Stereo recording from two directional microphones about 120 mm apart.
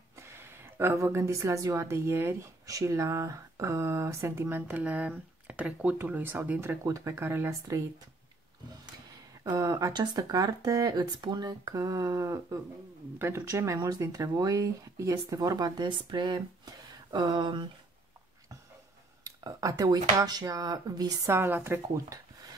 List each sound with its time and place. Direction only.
0.3 s a woman's voice: 20° right (ahead or behind)
9.4 s a woman's voice: 30° right (ahead or behind)
19.2 s speech: 30° right (ahead or behind)
21.3 s speech: 20° right (ahead or behind)